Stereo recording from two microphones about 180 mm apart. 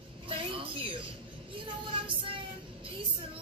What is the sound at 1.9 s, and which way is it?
Speech, 30° right (ahead or behind).